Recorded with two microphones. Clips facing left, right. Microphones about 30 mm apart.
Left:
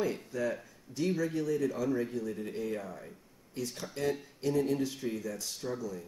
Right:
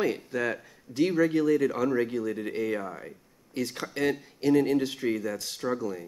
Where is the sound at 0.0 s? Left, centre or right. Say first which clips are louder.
Right 5 dB; right.